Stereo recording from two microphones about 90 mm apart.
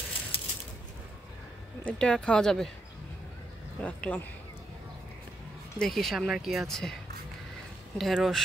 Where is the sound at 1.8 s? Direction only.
10° left (ahead or behind).